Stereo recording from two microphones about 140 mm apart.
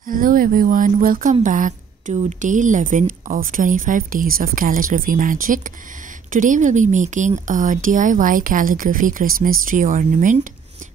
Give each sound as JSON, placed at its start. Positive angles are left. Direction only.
{"t": 0.0, "sound": "speech", "side_deg": -80}
{"t": 1.4, "sound": "a woman's voice", "side_deg": -70}